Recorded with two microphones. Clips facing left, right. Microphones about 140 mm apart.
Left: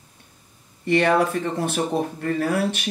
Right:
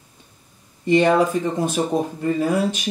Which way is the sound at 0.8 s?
15° right (ahead or behind).